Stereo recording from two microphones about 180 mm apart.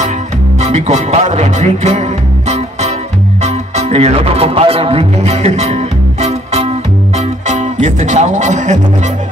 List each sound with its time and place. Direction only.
0.6 s music: 40° right (ahead or behind)